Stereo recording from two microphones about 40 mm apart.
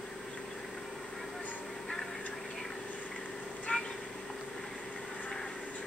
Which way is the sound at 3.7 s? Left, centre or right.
Left.